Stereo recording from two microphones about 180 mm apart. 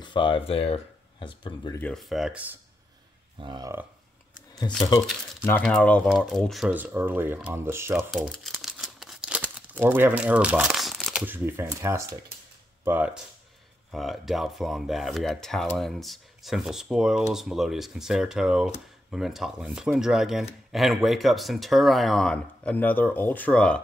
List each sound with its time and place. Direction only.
0.0 s speech: 25° left (ahead or behind)
1.8 s speech: 5° left (ahead or behind)
3.3 s speech: 25° right (ahead or behind)
4.6 s speech: 25° left (ahead or behind)
5.6 s speech: 5° left (ahead or behind); by 8.0 s 15° right (ahead or behind)
8.1 s crumpling: centre (ahead or behind)
12.8 s speech: 10° right (ahead or behind)